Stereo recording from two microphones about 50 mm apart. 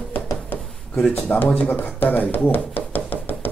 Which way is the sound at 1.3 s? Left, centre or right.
Left.